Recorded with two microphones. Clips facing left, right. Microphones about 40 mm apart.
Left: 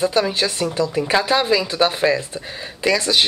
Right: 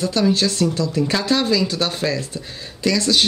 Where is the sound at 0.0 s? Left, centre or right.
Left.